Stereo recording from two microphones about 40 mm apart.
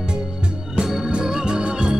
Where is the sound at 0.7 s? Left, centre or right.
Centre.